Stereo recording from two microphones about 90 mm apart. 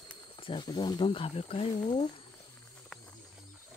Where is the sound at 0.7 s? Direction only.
55° left (ahead or behind); by 2.1 s 80° left.